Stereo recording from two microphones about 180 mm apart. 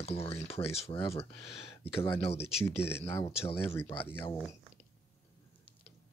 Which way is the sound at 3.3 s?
30° left (ahead or behind).